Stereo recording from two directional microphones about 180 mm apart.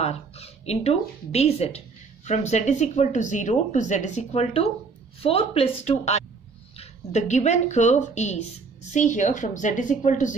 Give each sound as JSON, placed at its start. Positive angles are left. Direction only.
{"t": 0.0, "sound": "a woman's voice", "side_deg": 35}